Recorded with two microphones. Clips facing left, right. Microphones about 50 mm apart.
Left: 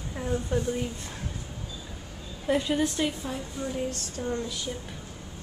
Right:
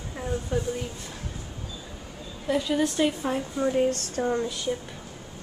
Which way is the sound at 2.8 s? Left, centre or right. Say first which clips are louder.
Right 3 dB; centre.